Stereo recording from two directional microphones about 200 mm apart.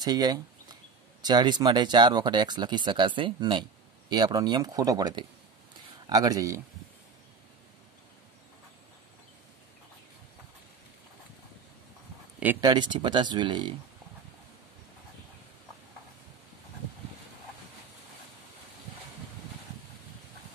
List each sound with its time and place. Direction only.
0.0 s a sound: 20° right (ahead or behind)
1.2 s speech: 20° right (ahead or behind)
12.5 s speech: 20° right (ahead or behind)